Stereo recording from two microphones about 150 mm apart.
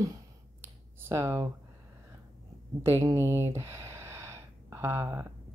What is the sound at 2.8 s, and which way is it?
Speech, 20° right (ahead or behind).